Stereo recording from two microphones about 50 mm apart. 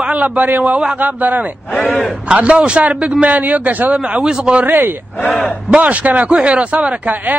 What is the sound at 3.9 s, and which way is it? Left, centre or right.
Speech, right.